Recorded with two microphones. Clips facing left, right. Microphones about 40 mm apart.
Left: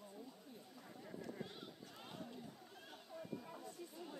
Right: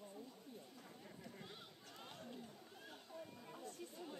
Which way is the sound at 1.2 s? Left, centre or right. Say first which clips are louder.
Left 7 dB; centre.